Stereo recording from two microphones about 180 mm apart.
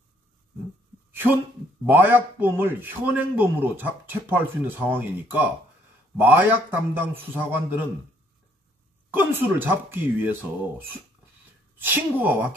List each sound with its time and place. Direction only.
1.1 s a sound: 10° right (ahead or behind)
1.9 s a man's voice: 10° right (ahead or behind)
9.1 s a man's voice: 10° right (ahead or behind)
11.8 s a man's voice: 10° right (ahead or behind)